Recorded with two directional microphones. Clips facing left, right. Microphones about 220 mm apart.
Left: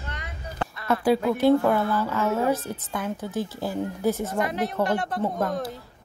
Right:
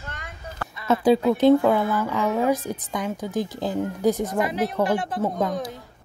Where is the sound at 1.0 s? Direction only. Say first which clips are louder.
Right 3 dB; 20° right (ahead or behind).